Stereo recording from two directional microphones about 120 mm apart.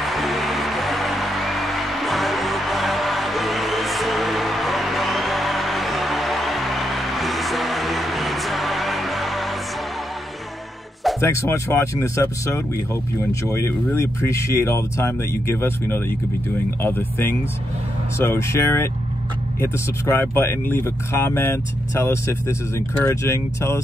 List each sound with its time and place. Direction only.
0.0 s music: centre (ahead or behind)
11.1 s speech: 20° left (ahead or behind)